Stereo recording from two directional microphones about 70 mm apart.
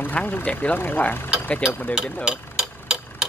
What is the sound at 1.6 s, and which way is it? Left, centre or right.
Speech, centre.